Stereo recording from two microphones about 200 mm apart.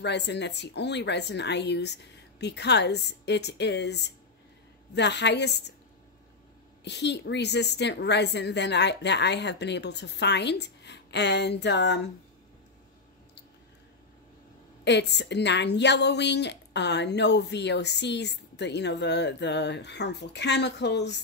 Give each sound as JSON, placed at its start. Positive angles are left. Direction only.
{"t": 0.0, "sound": "a woman's voice", "side_deg": 60}
{"t": 6.8, "sound": "a woman's voice", "side_deg": 60}
{"t": 14.9, "sound": "a woman's voice", "side_deg": 60}